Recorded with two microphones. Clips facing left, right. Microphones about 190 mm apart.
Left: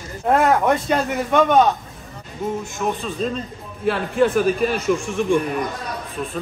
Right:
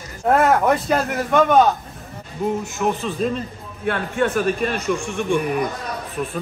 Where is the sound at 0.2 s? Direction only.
Centre (ahead or behind).